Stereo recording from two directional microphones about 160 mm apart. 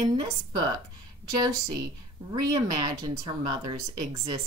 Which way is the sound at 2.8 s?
25° right (ahead or behind).